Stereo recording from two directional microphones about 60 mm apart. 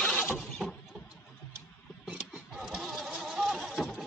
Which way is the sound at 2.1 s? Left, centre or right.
Centre.